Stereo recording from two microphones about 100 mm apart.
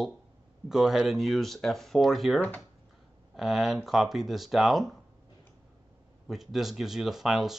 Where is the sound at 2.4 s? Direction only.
15° left (ahead or behind).